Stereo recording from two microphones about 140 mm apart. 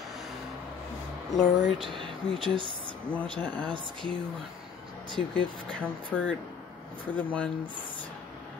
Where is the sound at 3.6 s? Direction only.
35° right (ahead or behind).